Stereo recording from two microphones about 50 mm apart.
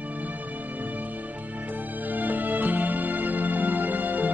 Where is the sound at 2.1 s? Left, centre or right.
Right.